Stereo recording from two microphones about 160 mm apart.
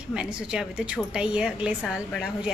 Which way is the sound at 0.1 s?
5° right (ahead or behind).